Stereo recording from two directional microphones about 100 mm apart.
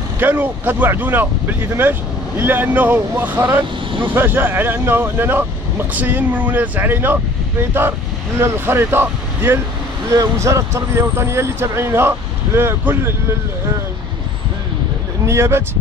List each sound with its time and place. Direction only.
0.2 s speech: 20° right (ahead or behind)
8.4 s speech: 25° right (ahead or behind)
15.2 s speech: 25° right (ahead or behind)